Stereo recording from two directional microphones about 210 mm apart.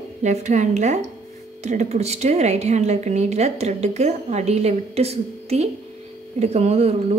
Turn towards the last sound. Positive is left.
turn(degrees=-30)  # may be behind; listen again after turning